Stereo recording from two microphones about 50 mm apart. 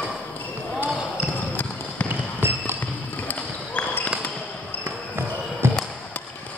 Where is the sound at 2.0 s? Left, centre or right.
Right.